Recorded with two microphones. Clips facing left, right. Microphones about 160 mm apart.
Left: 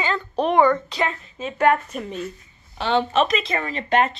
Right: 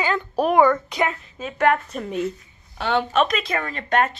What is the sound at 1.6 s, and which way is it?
Speech, 10° left (ahead or behind).